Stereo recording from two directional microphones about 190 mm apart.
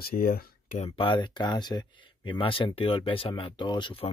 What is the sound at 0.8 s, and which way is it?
Speech, 25° left (ahead or behind).